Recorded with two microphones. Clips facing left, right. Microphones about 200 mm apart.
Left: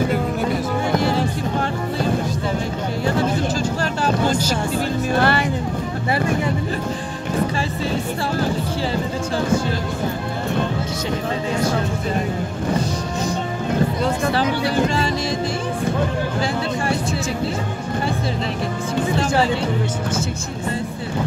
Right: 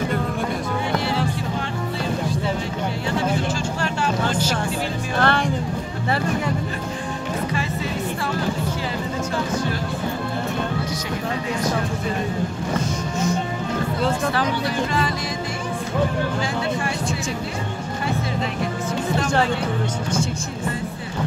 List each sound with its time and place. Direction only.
0.9 s music: 45° left (ahead or behind)
4.0 s vehicle: 40° left (ahead or behind)
5.2 s music: 5° left (ahead or behind)